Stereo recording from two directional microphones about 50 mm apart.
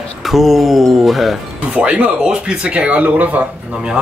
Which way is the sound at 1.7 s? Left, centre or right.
Right.